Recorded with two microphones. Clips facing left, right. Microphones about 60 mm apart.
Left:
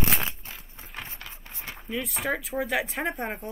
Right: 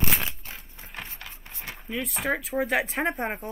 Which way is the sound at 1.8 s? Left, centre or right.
Centre.